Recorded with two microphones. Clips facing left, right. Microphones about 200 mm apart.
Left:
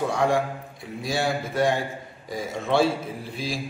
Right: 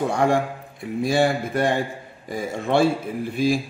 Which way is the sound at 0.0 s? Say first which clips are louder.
Right 2 dB; 55° right (ahead or behind).